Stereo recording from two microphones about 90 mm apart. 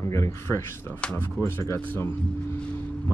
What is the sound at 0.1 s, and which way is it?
Speech, 30° left (ahead or behind).